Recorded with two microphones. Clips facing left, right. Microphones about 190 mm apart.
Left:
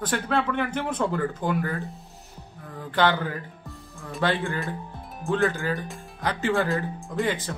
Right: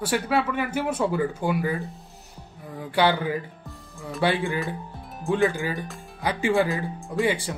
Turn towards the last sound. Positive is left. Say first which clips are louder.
# right 2 dB
turn(degrees=-10)  # may be behind; listen again after turning